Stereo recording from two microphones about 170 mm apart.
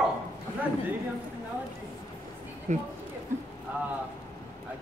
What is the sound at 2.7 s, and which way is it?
Speech, 45° right (ahead or behind).